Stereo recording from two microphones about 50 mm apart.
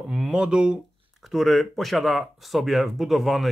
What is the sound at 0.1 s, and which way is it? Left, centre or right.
Speech, centre.